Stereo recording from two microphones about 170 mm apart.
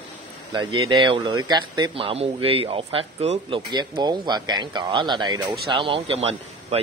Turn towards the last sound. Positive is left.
turn(degrees=-35)  # may be behind; listen again after turning